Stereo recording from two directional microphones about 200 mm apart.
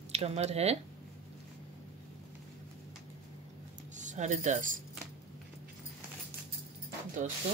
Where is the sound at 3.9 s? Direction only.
35° right (ahead or behind).